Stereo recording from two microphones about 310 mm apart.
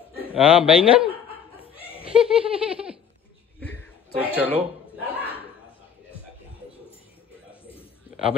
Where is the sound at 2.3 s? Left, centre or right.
Centre.